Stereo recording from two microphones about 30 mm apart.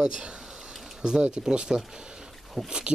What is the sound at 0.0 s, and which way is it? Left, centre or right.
Speech, right.